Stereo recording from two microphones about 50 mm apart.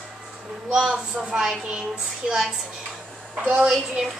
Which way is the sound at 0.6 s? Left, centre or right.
Centre.